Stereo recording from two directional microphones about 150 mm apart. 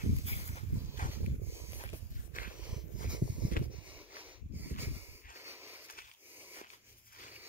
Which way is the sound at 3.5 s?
65° left (ahead or behind).